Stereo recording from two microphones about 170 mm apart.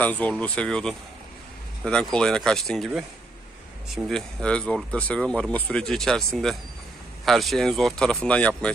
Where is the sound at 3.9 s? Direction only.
Centre (ahead or behind).